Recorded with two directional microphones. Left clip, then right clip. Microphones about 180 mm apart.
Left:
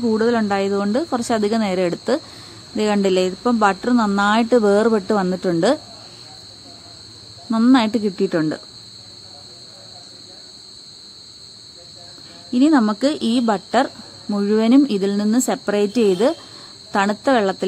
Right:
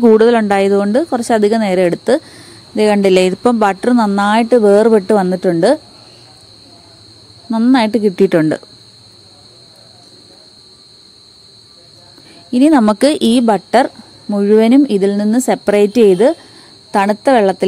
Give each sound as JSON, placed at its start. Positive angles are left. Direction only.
{"t": 0.0, "sound": "a woman's voice", "side_deg": -50}
{"t": 7.5, "sound": "a woman's voice", "side_deg": -20}
{"t": 8.2, "sound": "speech", "side_deg": -35}
{"t": 12.4, "sound": "speech", "side_deg": -25}
{"t": 12.8, "sound": "a woman's voice", "side_deg": -45}